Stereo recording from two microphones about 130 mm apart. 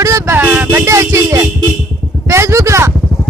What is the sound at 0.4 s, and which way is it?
Music, 15° right (ahead or behind).